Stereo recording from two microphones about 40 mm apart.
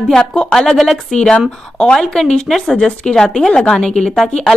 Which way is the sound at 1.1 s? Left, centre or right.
Left.